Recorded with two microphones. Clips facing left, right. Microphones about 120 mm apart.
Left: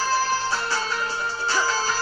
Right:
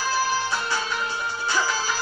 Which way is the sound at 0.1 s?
15° right (ahead or behind).